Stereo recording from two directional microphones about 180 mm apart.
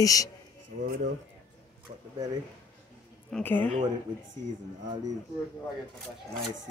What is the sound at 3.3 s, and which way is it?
Speech, 10° left (ahead or behind).